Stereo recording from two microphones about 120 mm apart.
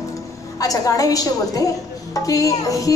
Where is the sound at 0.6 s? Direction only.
30° left (ahead or behind).